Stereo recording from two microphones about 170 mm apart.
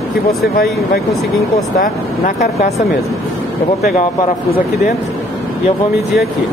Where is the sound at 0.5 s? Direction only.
65° left (ahead or behind).